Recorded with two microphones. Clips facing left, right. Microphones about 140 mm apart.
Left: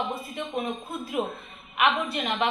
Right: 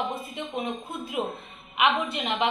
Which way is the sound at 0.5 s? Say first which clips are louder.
Left 1 dB; 20° right (ahead or behind).